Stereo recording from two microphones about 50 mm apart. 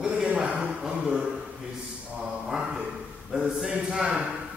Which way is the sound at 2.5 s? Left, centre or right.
Centre.